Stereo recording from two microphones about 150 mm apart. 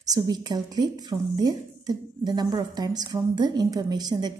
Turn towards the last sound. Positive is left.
turn(degrees=-25)  # may be behind; listen again after turning